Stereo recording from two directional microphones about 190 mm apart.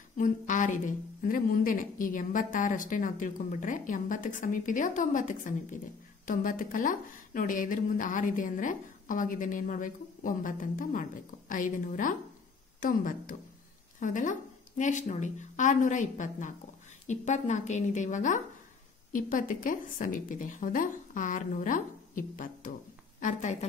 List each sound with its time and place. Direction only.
0.2 s a woman's voice: 40° left (ahead or behind)